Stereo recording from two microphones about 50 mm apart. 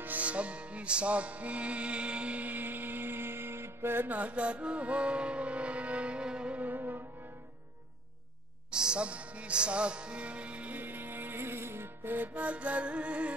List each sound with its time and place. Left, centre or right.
0.0 s music: right
4.1 s music: right
6.6 s music: right
8.6 s music: centre
10.8 s music: right
12.4 s music: right